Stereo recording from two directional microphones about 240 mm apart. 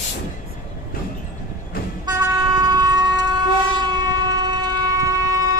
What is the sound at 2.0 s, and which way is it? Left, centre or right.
Vehicle, centre.